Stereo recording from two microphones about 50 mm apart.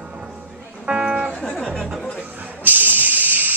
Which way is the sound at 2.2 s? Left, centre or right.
Right.